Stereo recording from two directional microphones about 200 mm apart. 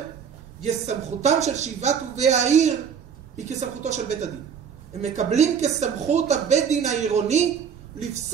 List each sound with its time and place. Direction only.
0.6 s speech: 35° right (ahead or behind)